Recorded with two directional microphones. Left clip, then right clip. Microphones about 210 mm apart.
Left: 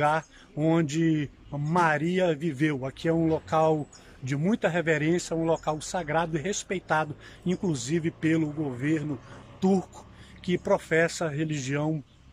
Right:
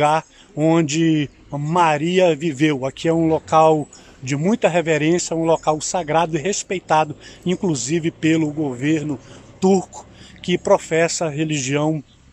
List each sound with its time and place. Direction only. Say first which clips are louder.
0.0 s a man's voice: right 8 dB; 10° right (ahead or behind)